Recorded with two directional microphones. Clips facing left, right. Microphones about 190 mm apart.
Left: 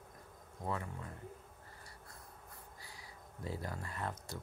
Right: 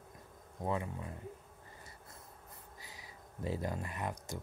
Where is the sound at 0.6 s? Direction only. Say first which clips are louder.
Right 4 dB; 20° right (ahead or behind).